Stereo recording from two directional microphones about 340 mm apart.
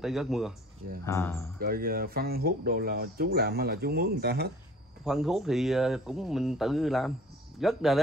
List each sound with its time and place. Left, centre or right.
0.0 s speech: centre
1.6 s speech: right
5.0 s speech: centre